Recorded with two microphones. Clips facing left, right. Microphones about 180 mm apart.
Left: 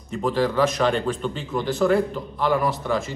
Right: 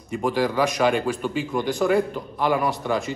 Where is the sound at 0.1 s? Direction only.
10° right (ahead or behind).